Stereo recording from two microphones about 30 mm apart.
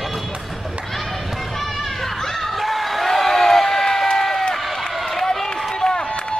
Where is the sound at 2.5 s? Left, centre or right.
Centre.